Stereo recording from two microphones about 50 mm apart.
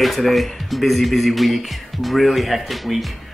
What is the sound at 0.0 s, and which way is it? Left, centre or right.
Speech, centre.